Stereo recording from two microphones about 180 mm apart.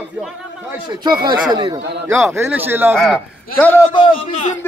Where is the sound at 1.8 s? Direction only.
70° right (ahead or behind).